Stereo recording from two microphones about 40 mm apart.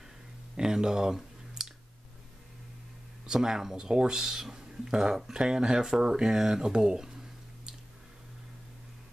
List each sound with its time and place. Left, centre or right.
0.6 s speech: centre
1.6 s clicking: centre
3.3 s speech: centre